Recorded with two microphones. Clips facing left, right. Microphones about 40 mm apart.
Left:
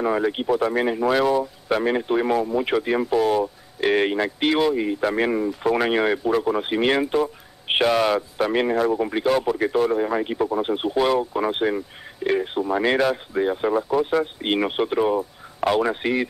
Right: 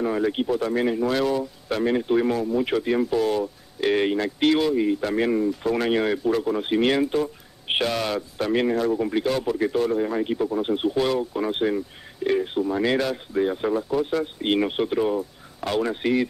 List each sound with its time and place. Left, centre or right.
0.0 s speech: centre